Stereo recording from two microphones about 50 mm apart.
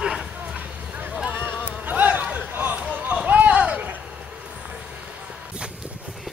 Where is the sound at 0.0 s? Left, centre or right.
Centre.